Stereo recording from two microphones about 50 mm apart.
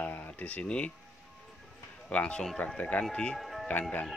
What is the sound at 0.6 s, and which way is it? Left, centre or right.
Speech, left.